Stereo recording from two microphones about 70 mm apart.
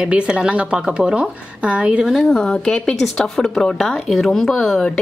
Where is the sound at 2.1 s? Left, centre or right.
Centre.